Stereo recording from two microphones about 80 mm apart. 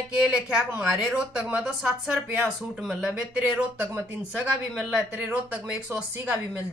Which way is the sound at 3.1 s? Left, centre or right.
Right.